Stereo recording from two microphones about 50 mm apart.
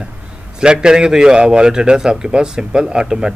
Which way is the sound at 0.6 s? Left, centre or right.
Centre.